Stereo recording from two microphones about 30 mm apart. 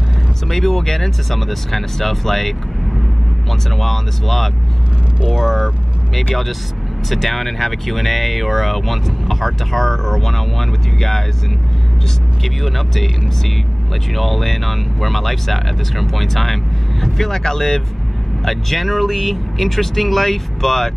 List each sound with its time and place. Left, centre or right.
0.5 s speech: centre
3.7 s speech: centre
7.1 s speech: centre
12.6 s speech: centre
14.1 s speech: centre
18.4 s speech: centre